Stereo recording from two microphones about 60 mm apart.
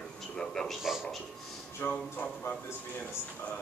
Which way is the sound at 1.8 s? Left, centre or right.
Left.